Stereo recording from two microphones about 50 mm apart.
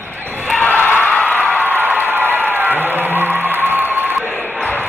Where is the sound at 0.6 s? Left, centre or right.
Left.